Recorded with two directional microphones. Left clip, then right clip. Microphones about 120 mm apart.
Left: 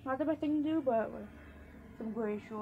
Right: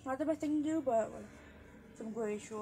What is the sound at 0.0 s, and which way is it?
A woman's voice, 10° right (ahead or behind).